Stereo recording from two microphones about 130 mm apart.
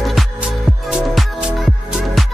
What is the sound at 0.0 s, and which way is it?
Music, centre (ahead or behind).